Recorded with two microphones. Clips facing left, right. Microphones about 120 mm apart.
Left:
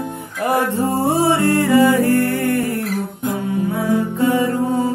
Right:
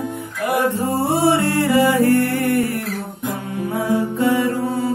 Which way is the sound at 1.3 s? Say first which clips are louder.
Left 1 dB; 20° right (ahead or behind).